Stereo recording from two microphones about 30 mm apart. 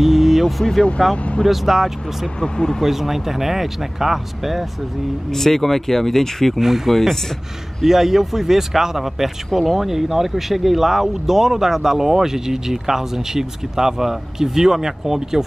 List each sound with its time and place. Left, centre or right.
0.0 s vehicle: centre
1.1 s speech: left
1.4 s speech: centre
2.4 s speech: left
2.8 s speech: centre
5.3 s speech: centre
6.6 s speech: centre
6.9 s speech: centre
7.8 s speech: centre
9.5 s speech: centre
9.8 s speech: centre